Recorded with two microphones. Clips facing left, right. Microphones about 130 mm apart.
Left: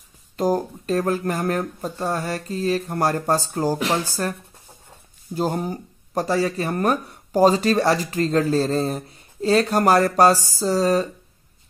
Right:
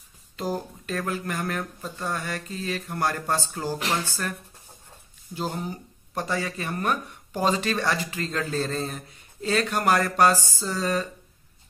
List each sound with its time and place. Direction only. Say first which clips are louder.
0.4 s speech: left 8 dB; 45° left (ahead or behind)